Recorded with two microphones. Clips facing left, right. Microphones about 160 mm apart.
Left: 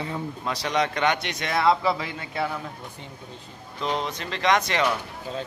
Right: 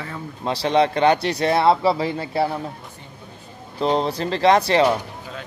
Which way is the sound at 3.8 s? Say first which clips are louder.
Right 8 dB; 35° right (ahead or behind).